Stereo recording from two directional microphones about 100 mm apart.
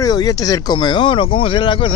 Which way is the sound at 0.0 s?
40° left (ahead or behind).